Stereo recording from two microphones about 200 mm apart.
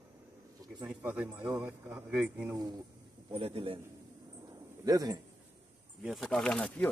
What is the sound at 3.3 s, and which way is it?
Speech, 30° right (ahead or behind).